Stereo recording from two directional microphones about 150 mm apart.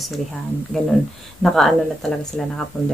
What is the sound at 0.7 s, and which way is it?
Speech, 5° left (ahead or behind).